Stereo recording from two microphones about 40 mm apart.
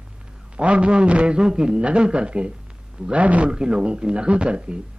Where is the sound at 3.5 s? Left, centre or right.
Right.